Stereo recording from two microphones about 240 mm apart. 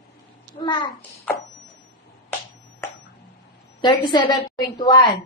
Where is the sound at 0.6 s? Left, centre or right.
Centre.